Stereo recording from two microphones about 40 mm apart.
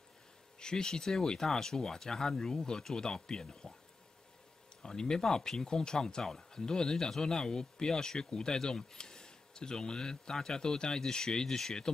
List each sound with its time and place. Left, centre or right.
0.6 s speech: centre
4.8 s speech: centre